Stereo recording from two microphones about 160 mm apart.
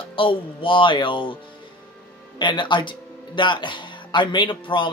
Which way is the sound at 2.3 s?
30° left (ahead or behind).